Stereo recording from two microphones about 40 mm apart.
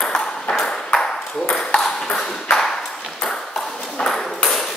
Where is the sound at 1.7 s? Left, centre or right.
Left.